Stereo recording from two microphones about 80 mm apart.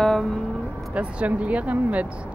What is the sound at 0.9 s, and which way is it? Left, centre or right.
Speech, centre.